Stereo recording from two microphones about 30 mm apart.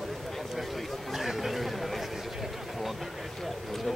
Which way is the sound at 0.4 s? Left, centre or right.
Centre.